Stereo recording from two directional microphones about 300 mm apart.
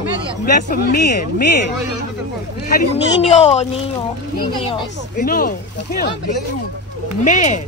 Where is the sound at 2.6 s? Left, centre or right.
Left.